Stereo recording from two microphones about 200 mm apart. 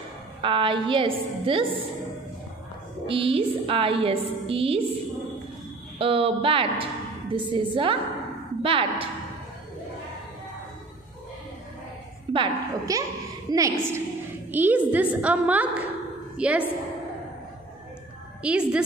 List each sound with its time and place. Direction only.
0.4 s a woman's voice: 25° right (ahead or behind)
3.1 s a woman's voice: 25° right (ahead or behind)
5.9 s a woman's voice: 30° right (ahead or behind)
12.3 s a woman's voice: 20° right (ahead or behind)
18.4 s a woman's voice: 5° right (ahead or behind)